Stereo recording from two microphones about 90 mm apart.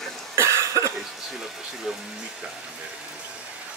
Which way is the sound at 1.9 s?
5° right (ahead or behind).